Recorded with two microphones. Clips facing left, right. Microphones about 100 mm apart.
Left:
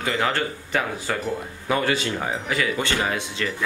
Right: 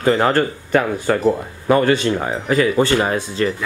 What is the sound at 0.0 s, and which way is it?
Speech, 40° right (ahead or behind).